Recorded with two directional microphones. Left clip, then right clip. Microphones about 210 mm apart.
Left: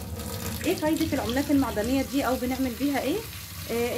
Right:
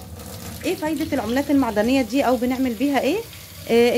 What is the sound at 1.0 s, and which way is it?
Speech, 35° right (ahead or behind).